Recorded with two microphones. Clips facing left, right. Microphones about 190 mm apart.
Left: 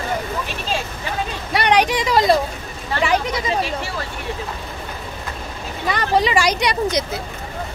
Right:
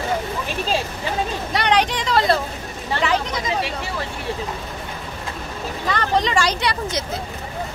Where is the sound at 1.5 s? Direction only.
10° left (ahead or behind).